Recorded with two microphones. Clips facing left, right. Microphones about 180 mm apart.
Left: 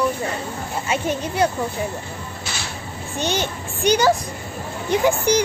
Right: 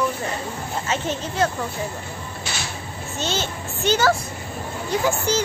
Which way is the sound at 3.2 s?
15° left (ahead or behind).